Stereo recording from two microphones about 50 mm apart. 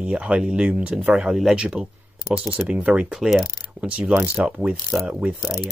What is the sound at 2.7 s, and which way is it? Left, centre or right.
Speech, right.